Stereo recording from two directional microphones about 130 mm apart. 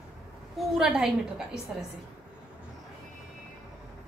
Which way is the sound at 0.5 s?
5° right (ahead or behind).